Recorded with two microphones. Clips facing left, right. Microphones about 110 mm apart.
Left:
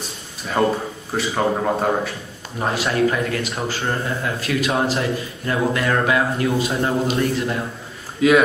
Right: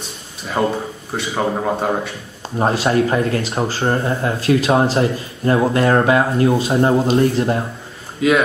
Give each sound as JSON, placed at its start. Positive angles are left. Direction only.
{"t": 1.1, "sound": "speech", "side_deg": 0}
{"t": 2.6, "sound": "speech", "side_deg": -30}
{"t": 8.2, "sound": "speech", "side_deg": 0}